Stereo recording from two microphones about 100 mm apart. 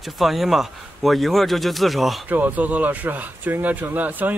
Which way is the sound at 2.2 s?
15° right (ahead or behind).